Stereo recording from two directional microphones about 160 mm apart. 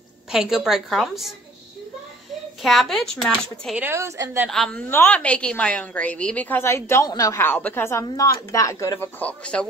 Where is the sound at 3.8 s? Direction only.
15° right (ahead or behind).